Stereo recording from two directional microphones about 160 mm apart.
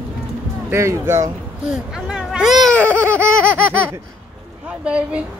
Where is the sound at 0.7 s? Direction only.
15° right (ahead or behind).